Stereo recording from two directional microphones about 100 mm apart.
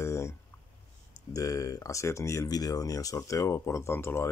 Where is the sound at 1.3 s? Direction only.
35° left (ahead or behind).